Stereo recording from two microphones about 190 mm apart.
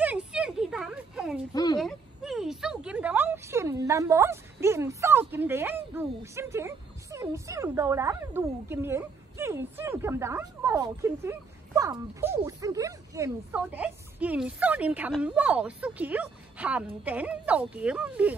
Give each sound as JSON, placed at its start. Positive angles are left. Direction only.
{"t": 0.0, "sound": "a sound", "side_deg": -5}
{"t": 1.5, "sound": "speech", "side_deg": 20}
{"t": 1.8, "sound": "a woman's voice", "side_deg": 0}